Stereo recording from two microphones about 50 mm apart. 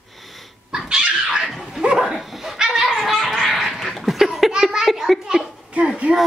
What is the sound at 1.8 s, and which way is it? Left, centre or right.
Dog, centre.